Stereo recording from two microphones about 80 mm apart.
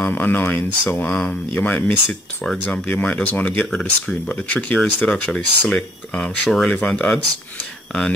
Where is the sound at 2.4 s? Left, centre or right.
Centre.